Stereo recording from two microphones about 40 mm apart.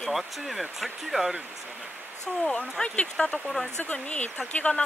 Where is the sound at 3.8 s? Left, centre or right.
Left.